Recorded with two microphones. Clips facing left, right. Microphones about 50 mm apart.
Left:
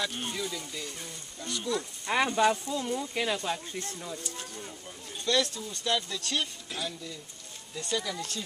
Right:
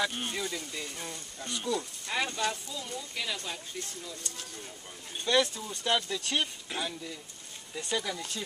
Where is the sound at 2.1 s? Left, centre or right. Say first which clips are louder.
Left 7 dB; left.